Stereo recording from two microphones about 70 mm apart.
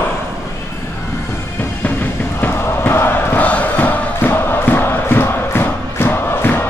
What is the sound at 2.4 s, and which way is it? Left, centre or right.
Music, left.